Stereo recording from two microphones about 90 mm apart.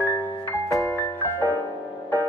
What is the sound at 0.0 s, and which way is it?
Music, 20° left (ahead or behind).